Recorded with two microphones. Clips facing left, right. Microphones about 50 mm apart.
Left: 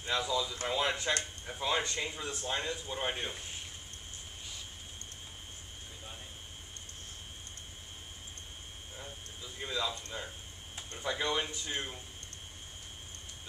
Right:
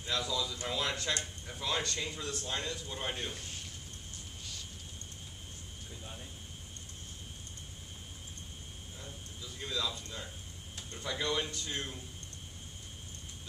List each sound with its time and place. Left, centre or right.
0.0 s speech: left
8.9 s a sound: left
10.8 s speech: centre